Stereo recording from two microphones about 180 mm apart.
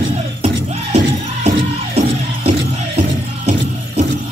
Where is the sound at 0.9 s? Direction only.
35° right (ahead or behind).